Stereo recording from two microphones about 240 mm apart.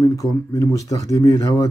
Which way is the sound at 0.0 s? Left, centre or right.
Centre.